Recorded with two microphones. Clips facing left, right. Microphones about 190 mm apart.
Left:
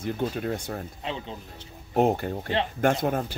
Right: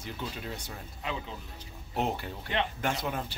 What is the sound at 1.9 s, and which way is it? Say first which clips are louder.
Speech: left 9 dB; 50° left (ahead or behind).